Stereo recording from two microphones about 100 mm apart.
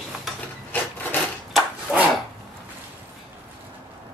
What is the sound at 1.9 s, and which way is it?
Dog, 15° right (ahead or behind).